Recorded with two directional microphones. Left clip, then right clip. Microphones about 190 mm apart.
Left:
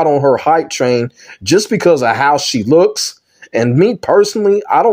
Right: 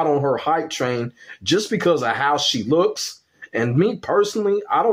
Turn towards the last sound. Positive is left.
turn(degrees=40)  # may be behind; listen again after turning